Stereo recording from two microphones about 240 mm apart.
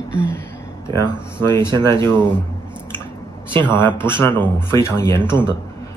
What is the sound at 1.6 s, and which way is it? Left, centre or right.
Speech, centre.